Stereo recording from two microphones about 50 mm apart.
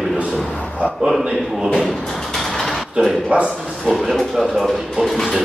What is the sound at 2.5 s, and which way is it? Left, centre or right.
Mechanisms, centre.